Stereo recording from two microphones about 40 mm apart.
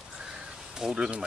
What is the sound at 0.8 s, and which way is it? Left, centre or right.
Speech, centre.